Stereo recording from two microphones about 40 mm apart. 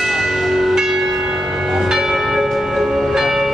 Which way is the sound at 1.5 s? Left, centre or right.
Centre.